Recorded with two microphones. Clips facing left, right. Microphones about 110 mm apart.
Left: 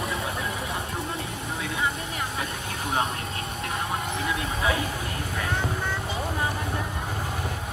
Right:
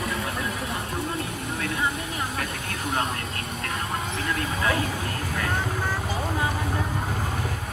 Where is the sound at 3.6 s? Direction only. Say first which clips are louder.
Even; 25° left (ahead or behind).